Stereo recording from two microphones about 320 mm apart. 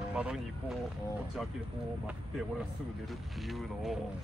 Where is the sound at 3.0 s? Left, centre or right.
Centre.